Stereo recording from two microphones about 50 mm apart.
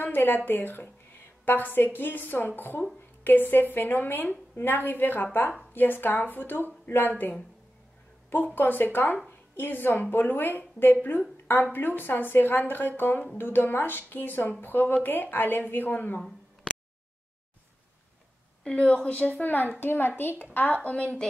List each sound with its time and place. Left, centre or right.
0.5 s a woman's voice: left
8.5 s a woman's voice: left
8.8 s speech: left
9.3 s a woman's voice: left
18.6 s a woman's voice: left
20.9 s a woman's voice: centre